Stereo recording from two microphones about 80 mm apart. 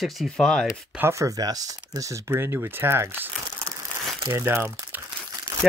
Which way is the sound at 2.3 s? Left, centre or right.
Right.